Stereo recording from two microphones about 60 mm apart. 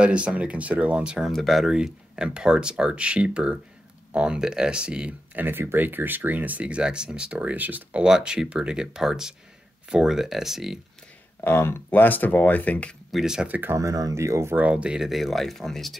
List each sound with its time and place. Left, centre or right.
0.0 s speech: centre
1.3 s speech: centre
1.7 s speech: centre
5.4 s speech: right; by 7.5 s centre
7.5 s speech: right
8.0 s speech: centre
11.4 s speech: left
13.1 s speech: centre
13.5 s speech: right
13.7 s speech: right
14.1 s speech: right
14.5 s speech: right
15.0 s speech: centre